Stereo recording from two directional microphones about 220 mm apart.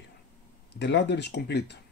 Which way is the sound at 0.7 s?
50° left (ahead or behind).